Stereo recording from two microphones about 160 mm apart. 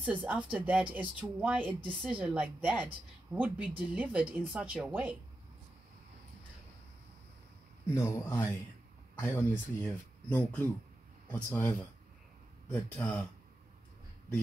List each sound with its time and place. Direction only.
0.0 s speech: 10° right (ahead or behind)
7.8 s a man's voice: 15° left (ahead or behind)
12.7 s a man's voice: 10° left (ahead or behind)